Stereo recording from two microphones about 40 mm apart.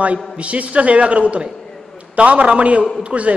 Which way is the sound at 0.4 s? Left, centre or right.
Right.